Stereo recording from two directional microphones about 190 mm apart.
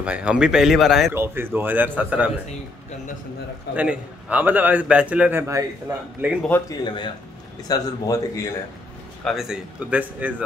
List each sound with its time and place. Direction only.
0.0 s speech: 5° right (ahead or behind)
1.1 s a man's voice: 10° right (ahead or behind)
3.7 s a man's voice: 5° right (ahead or behind)
6.7 s a man's voice: 25° left (ahead or behind)
9.2 s speech: centre (ahead or behind)